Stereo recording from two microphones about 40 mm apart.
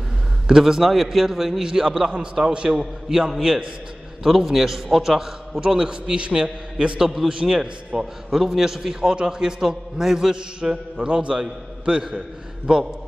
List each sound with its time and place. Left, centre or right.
0.5 s a man's voice: centre
0.8 s a man's voice: centre; by 2.8 s right
2.8 s a man's voice: centre
7.0 s a man's voice: centre
8.3 s a man's voice: centre